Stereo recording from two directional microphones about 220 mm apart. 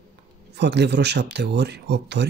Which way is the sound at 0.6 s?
50° right (ahead or behind).